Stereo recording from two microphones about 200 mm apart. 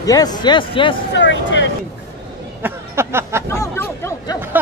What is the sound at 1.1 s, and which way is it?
Speech, 60° left (ahead or behind).